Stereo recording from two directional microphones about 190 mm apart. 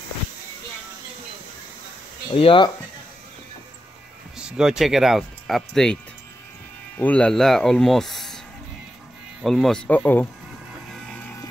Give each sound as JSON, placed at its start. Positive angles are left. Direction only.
{"t": 2.3, "sound": "speech", "side_deg": 25}
{"t": 4.4, "sound": "speech", "side_deg": -5}
{"t": 7.0, "sound": "speech", "side_deg": 5}
{"t": 9.4, "sound": "speech", "side_deg": 0}
{"t": 11.1, "sound": "vehicle", "side_deg": 5}